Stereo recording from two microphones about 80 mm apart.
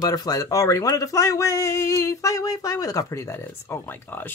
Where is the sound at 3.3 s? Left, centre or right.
Left.